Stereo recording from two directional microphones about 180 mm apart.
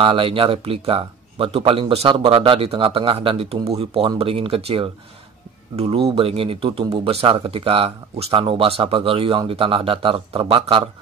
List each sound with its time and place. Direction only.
0.0 s speech: 30° right (ahead or behind)